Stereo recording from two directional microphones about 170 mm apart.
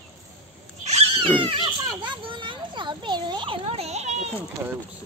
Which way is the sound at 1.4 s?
30° right (ahead or behind).